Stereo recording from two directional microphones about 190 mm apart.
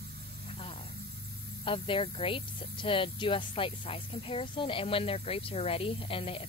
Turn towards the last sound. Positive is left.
turn(degrees=30)  # may be behind; listen again after turning